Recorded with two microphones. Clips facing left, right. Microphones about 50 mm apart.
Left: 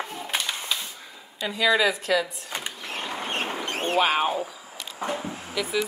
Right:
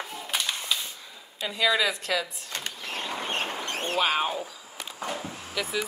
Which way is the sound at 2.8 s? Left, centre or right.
Left.